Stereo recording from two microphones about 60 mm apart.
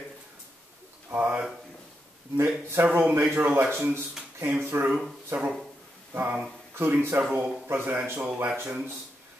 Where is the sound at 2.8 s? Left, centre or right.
Right.